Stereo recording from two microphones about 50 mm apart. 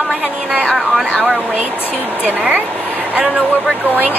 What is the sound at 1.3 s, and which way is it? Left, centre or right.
Speech, right.